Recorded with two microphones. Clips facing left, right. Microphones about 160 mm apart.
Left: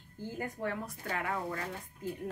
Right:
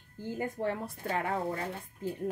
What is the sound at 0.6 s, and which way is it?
A woman's voice, 30° right (ahead or behind).